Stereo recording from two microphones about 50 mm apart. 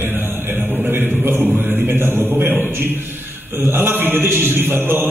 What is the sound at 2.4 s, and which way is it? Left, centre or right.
Speech, right.